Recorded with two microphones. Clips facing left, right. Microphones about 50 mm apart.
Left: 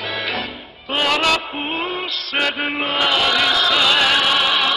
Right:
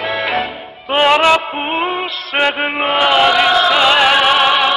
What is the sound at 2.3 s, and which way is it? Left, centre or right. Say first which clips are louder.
Chant: right 5 dB; right.